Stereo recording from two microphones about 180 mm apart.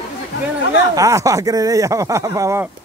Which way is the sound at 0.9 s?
15° right (ahead or behind).